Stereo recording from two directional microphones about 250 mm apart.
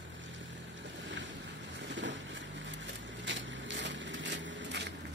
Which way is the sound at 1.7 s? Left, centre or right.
Right.